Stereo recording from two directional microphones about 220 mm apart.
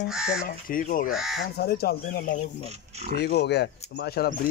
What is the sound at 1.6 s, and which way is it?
Speech, 45° left (ahead or behind).